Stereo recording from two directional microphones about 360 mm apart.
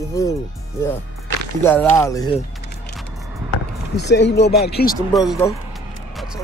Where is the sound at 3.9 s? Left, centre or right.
Left.